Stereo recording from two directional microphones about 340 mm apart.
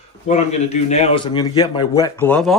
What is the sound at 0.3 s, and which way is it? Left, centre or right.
A man's voice, centre.